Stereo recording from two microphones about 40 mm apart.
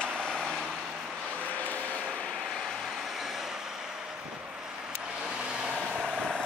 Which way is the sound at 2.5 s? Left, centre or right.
Centre.